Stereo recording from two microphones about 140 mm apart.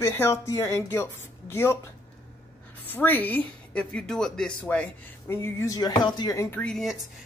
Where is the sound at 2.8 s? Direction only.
15° left (ahead or behind).